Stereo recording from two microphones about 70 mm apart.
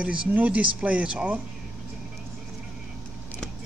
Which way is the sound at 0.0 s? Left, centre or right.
Centre.